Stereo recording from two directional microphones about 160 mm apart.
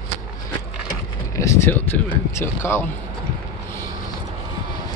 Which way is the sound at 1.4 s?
15° left (ahead or behind).